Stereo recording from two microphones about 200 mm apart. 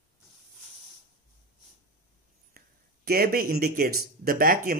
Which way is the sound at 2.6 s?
50° right (ahead or behind).